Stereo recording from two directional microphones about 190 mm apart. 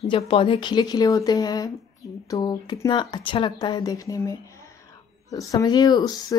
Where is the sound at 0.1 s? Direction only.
30° left (ahead or behind).